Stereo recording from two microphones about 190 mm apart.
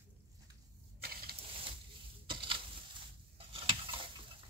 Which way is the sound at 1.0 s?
55° right (ahead or behind).